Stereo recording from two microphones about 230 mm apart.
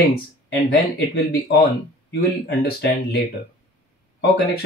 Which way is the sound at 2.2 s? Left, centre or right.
Left.